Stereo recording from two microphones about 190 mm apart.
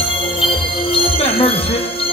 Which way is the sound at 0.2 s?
25° left (ahead or behind).